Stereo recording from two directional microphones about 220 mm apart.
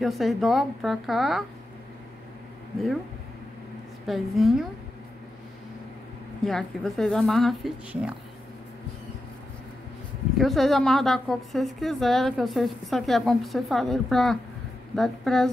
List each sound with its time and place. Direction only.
0.0 s a woman's voice: centre (ahead or behind)
4.0 s a woman's voice: centre (ahead or behind)
6.4 s a woman's voice: centre (ahead or behind)
10.3 s a woman's voice: centre (ahead or behind)